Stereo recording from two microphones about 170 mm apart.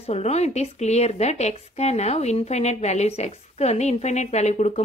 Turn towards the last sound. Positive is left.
turn(degrees=40)  # may be behind; listen again after turning